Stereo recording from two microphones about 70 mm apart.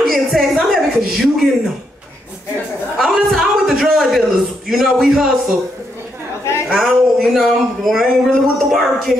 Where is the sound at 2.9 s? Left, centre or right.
Centre.